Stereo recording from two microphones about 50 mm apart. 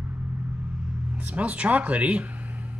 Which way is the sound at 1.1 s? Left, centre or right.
Right.